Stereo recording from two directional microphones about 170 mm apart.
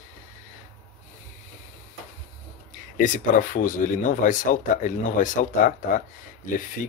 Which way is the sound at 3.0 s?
50° left (ahead or behind).